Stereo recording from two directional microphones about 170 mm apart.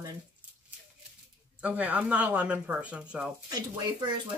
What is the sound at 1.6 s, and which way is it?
Speech, 10° right (ahead or behind).